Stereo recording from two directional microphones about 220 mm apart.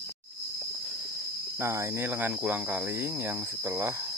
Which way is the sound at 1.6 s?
10° right (ahead or behind).